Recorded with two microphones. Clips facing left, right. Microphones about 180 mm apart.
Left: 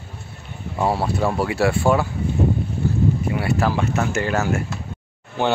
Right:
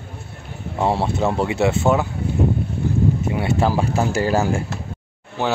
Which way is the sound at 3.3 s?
25° right (ahead or behind).